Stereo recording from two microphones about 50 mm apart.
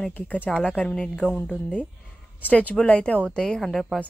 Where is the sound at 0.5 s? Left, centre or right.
Left.